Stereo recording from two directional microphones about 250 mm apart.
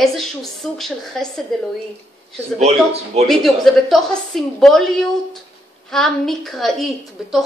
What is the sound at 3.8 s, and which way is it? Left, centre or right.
A woman's voice, centre.